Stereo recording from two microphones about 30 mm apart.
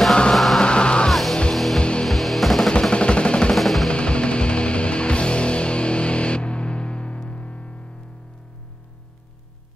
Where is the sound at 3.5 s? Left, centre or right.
Centre.